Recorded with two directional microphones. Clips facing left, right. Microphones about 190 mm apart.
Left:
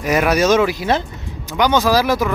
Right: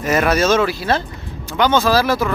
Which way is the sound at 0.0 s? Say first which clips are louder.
Left 1 dB; 10° left (ahead or behind).